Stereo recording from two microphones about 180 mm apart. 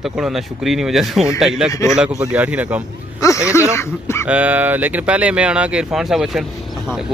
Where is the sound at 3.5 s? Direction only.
15° left (ahead or behind).